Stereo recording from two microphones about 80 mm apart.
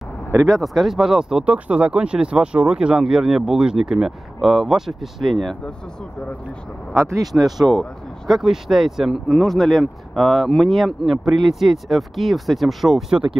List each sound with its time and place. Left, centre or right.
0.5 s speech: centre
6.9 s speech: right
7.3 s speech: centre